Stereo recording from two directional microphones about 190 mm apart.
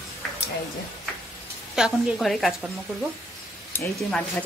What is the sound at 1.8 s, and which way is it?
A woman's voice, centre (ahead or behind).